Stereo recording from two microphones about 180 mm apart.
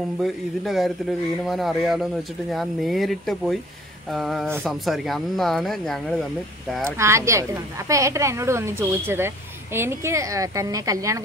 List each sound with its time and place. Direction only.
0.2 s speech: centre (ahead or behind)
6.8 s speech: 15° right (ahead or behind)